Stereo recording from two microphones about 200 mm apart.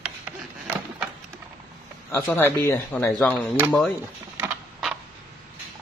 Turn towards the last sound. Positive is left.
turn(degrees=0)  # may be behind; listen again after turning